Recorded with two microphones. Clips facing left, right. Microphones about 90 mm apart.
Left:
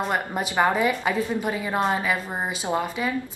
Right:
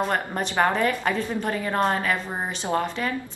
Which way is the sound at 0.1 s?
10° left (ahead or behind).